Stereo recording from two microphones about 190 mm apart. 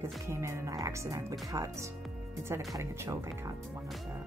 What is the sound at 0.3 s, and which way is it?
Music, 15° right (ahead or behind).